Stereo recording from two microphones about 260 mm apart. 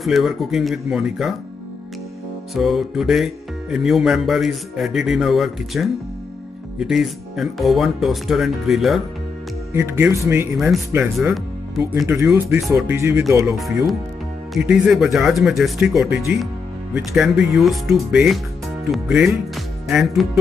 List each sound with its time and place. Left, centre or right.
0.0 s speech: centre
2.5 s speech: centre
13.6 s speech: centre